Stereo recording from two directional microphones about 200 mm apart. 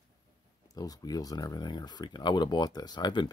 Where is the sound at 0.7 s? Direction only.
20° left (ahead or behind).